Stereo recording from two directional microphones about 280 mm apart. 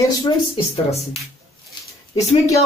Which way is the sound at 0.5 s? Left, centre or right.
Left.